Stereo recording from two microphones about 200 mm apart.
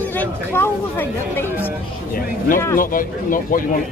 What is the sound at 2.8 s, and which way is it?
Speech, 45° left (ahead or behind).